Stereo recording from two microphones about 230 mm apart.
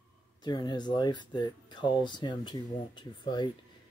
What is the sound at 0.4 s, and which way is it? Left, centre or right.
Speech, centre.